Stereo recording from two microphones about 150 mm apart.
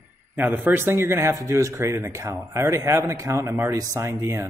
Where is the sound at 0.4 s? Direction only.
10° right (ahead or behind).